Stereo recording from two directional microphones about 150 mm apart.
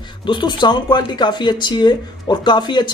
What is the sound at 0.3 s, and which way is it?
Speech, 30° left (ahead or behind).